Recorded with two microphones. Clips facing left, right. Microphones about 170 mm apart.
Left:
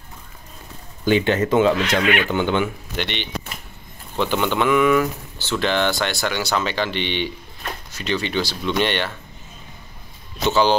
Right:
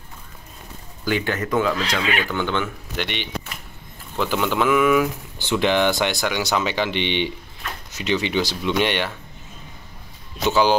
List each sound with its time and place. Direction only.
1.0 s speech: 25° left (ahead or behind)
3.0 s speech: 5° right (ahead or behind)
5.4 s speech: 15° right (ahead or behind)
10.4 s speech: 10° right (ahead or behind)